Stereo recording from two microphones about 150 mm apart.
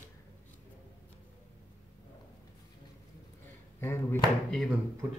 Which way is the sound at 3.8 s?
15° left (ahead or behind).